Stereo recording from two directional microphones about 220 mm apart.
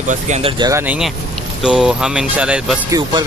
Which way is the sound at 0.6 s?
15° right (ahead or behind).